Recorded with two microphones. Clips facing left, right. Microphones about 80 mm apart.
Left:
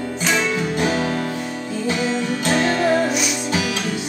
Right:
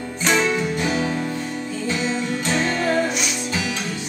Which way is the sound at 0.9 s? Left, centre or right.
Left.